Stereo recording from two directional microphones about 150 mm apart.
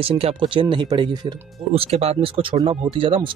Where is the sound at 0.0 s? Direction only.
40° right (ahead or behind).